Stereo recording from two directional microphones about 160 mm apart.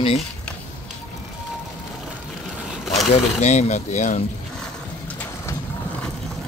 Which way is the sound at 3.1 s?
45° left (ahead or behind).